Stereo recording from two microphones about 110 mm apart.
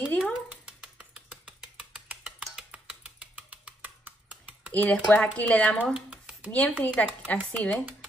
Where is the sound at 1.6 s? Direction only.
10° right (ahead or behind).